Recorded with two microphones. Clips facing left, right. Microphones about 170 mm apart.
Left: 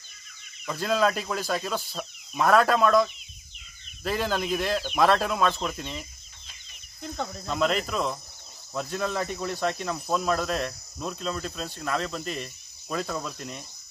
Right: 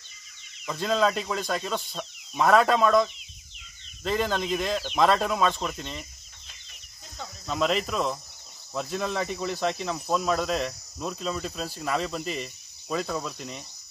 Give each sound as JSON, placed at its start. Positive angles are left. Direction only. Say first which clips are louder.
{"t": 0.7, "sound": "speech", "louder": "even", "side_deg": 0}
{"t": 7.0, "sound": "speech", "louder": "left 9 dB", "side_deg": 65}
{"t": 7.4, "sound": "speech", "louder": "right 1 dB", "side_deg": 0}